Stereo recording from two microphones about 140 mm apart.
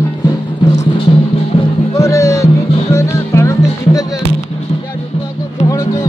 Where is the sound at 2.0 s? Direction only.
20° left (ahead or behind).